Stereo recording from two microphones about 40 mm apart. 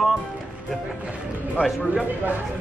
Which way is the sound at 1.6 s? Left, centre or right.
Left.